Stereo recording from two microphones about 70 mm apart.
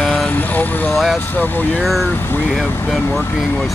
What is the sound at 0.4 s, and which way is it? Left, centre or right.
Vehicle, left.